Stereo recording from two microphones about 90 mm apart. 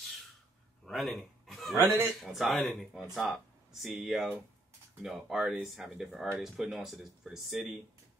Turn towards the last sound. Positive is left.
turn(degrees=-5)  # may be behind; listen again after turning